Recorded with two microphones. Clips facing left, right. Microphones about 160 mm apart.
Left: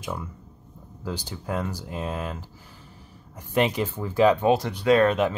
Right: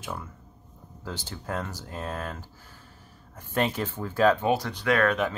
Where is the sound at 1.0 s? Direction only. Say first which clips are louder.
Left 4 dB; 10° left (ahead or behind).